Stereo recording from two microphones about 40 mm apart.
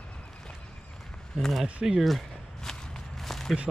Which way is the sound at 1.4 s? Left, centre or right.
Centre.